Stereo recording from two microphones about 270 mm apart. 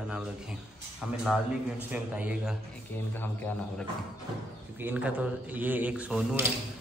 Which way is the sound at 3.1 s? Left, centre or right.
Centre.